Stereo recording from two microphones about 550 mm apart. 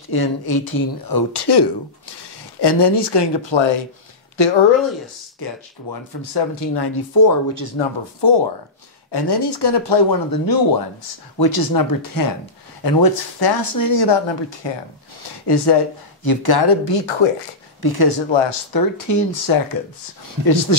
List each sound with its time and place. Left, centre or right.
0.1 s speech: left
7.2 s speech: left
7.7 s speech: left
17.8 s speech: left